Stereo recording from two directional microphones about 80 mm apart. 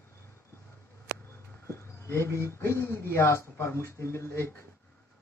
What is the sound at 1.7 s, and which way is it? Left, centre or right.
Speech, left.